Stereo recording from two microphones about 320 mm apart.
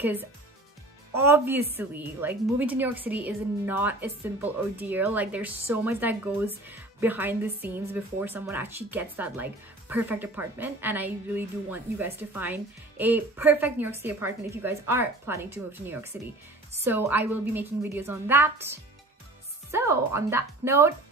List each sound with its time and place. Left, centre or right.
0.0 s a woman's voice: centre